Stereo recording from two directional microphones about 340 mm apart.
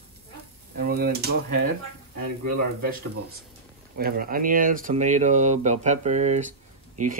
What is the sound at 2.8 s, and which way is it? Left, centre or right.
Speech, right.